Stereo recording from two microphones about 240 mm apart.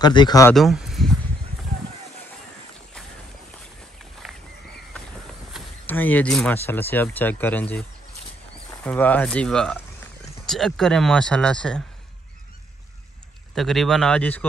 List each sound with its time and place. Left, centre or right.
0.0 s speech: centre
0.6 s a sound: centre
4.2 s a sound: centre
5.5 s speech: centre
8.8 s speech: centre
13.6 s speech: centre